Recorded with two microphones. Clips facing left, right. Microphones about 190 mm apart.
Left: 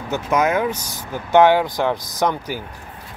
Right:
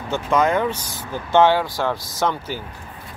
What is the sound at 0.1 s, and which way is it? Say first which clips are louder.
Speech: even; 10° left (ahead or behind).